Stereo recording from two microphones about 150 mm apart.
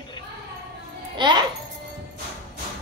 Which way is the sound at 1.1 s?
30° right (ahead or behind).